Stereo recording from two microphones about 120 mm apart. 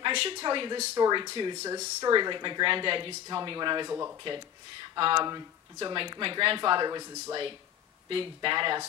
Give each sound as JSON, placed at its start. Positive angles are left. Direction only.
{"t": 0.0, "sound": "a woman's voice", "side_deg": -45}
{"t": 0.9, "sound": "speech", "side_deg": -30}
{"t": 3.9, "sound": "speech", "side_deg": -25}
{"t": 4.8, "sound": "speech", "side_deg": -45}
{"t": 8.1, "sound": "speech", "side_deg": -45}